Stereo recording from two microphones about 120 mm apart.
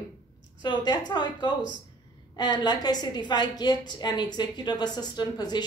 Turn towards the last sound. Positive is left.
turn(degrees=35)  # may be behind; listen again after turning